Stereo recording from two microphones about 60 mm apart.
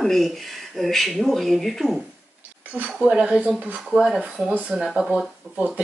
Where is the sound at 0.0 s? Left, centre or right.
Centre.